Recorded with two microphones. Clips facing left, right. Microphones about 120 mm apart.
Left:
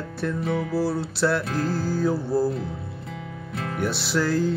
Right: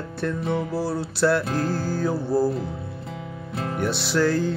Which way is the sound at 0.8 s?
Centre (ahead or behind).